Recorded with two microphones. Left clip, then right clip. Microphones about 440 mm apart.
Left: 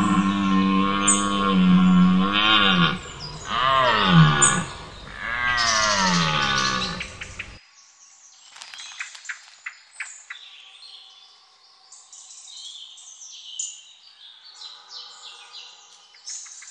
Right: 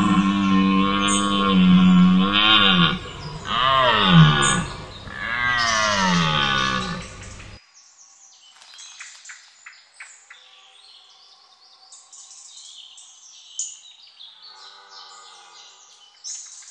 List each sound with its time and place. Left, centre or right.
0.0 s music: centre
9.3 s a sound: left
9.7 s frog: left